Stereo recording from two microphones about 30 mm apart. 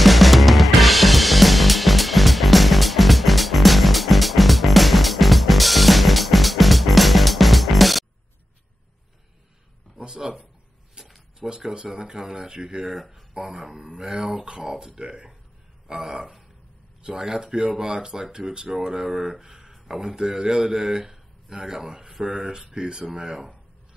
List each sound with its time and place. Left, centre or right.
0.0 s drum kit: centre
9.9 s a sound: right
11.7 s speech: right
12.9 s speech: centre
13.3 s speech: right
14.6 s speech: centre
19.0 s speech: centre
19.4 s a sound: right
20.2 s speech: right